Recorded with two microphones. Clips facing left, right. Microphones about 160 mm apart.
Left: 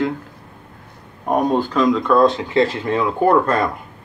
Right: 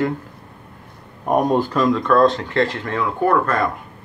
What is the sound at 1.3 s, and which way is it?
Speech, 5° right (ahead or behind).